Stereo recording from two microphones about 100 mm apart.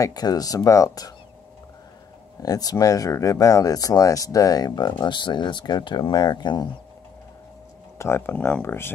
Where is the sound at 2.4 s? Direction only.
40° left (ahead or behind).